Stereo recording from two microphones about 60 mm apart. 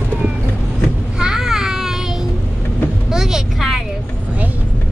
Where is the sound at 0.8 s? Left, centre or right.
Centre.